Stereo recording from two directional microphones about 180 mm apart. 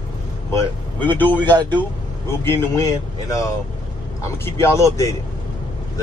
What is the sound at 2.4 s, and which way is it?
Speech, 15° left (ahead or behind).